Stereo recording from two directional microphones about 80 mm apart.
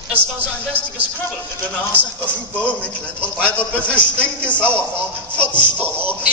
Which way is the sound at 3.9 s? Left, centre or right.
Centre.